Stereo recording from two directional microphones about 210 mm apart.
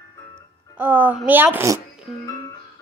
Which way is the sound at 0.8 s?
10° right (ahead or behind).